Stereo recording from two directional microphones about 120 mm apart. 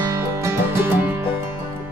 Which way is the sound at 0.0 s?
25° right (ahead or behind).